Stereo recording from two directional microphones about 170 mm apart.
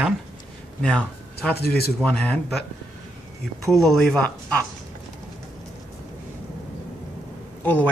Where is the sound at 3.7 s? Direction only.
Centre (ahead or behind).